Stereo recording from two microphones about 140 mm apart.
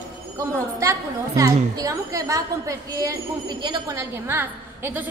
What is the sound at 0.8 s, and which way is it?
A woman's voice, 20° right (ahead or behind).